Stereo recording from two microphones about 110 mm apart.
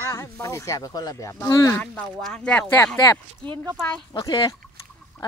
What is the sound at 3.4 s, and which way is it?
Speech, 10° left (ahead or behind).